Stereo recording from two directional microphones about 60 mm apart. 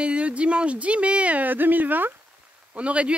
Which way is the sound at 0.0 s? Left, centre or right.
Right.